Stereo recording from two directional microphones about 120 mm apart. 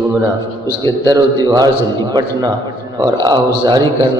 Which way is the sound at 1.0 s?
35° right (ahead or behind).